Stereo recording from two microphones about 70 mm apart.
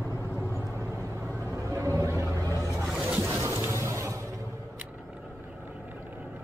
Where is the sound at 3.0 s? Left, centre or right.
Right.